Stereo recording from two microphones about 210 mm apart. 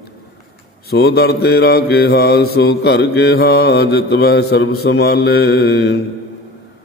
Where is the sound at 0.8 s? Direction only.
50° left (ahead or behind).